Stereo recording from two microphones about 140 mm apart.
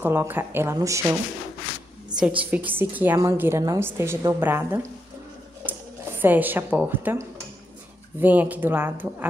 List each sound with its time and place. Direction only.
0.0 s a woman's voice: 15° right (ahead or behind)
2.1 s a woman's voice: 10° right (ahead or behind)